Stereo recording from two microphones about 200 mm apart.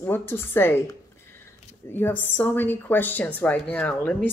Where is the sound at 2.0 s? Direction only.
10° left (ahead or behind).